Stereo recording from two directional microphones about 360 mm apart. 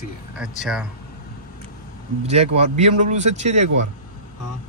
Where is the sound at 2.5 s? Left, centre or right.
Centre.